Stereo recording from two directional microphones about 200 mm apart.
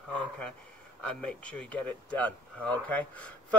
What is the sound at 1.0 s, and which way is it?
Speech, 5° left (ahead or behind).